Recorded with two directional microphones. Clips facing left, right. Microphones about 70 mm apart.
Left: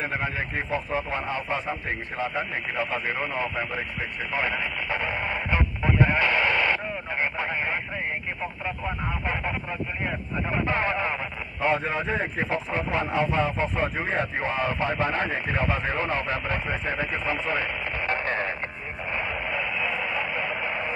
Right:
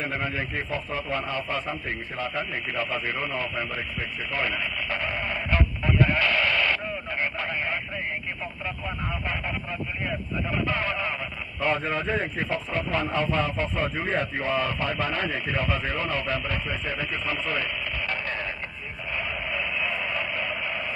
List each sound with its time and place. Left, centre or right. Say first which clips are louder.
0.0 s a man's voice: left 1 dB; centre
4.3 s radio: left 1 dB; centre
8.6 s a man's voice: left 1 dB; centre
11.6 s a man's voice: left 1 dB; centre; by 18.5 s left
19.1 s radio: left 1 dB; left
19.6 s radio: left 1 dB; centre